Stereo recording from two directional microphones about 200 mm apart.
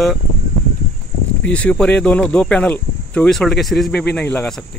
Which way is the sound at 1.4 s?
5° left (ahead or behind).